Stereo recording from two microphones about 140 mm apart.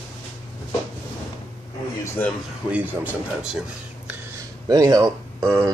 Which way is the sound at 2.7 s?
10° right (ahead or behind).